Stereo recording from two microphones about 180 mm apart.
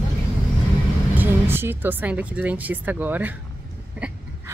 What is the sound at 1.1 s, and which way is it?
A woman's voice, 10° right (ahead or behind).